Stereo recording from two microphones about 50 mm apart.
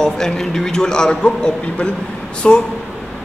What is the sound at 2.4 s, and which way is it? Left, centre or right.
Speech, centre.